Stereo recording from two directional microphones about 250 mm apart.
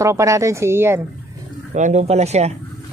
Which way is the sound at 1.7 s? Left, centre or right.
Right.